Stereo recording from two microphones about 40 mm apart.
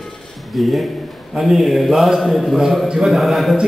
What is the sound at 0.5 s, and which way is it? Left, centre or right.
A man's voice, centre.